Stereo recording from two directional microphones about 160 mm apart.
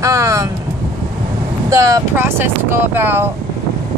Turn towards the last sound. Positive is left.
turn(degrees=-15)  # may be behind; listen again after turning